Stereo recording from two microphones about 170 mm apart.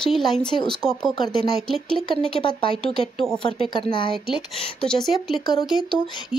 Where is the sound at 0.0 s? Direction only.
Centre (ahead or behind).